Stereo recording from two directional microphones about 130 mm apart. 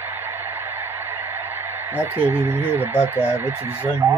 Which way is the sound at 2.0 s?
15° right (ahead or behind).